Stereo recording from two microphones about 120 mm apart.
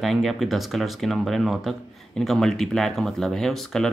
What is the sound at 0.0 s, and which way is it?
Speech, centre (ahead or behind).